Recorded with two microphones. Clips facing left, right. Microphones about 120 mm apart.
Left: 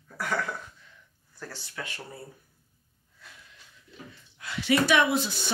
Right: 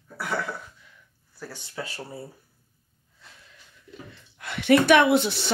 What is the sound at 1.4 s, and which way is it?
Speech, 5° right (ahead or behind).